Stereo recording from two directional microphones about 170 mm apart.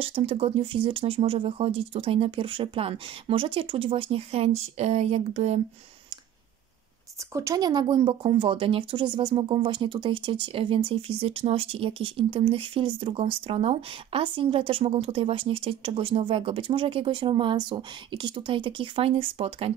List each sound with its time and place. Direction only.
0.0 s speech: 35° right (ahead or behind)
7.3 s speech: 20° right (ahead or behind); by 19.7 s 35° right (ahead or behind)